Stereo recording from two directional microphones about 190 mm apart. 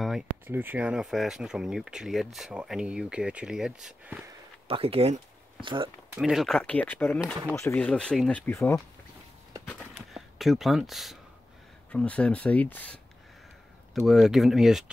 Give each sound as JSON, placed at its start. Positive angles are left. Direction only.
{"t": 0.5, "sound": "speech", "side_deg": -10}
{"t": 4.6, "sound": "speech", "side_deg": -30}
{"t": 6.1, "sound": "speech", "side_deg": 0}
{"t": 9.7, "sound": "a sound", "side_deg": -5}
{"t": 11.9, "sound": "speech", "side_deg": 5}